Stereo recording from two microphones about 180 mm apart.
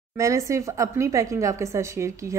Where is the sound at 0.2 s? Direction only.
15° right (ahead or behind).